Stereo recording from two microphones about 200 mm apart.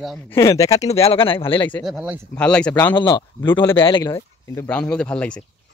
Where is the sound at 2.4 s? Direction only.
5° left (ahead or behind).